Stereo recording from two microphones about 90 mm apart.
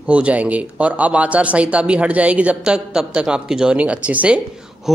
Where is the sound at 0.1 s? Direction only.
15° right (ahead or behind).